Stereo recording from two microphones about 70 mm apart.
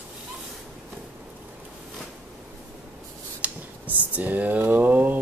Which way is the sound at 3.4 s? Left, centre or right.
Right.